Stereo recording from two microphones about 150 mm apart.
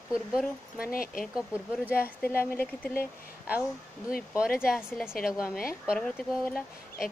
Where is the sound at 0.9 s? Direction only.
70° left (ahead or behind).